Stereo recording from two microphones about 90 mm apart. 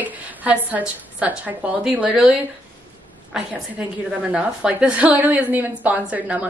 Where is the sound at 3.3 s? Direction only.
5° right (ahead or behind).